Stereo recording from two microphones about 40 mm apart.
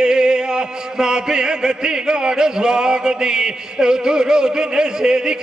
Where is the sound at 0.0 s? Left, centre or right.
Centre.